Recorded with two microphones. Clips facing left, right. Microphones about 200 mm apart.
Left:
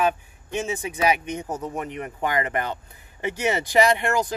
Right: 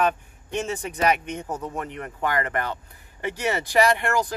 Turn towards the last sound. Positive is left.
turn(degrees=20)  # may be behind; listen again after turning